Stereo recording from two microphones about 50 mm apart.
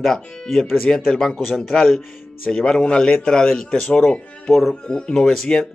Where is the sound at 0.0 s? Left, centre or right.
Centre.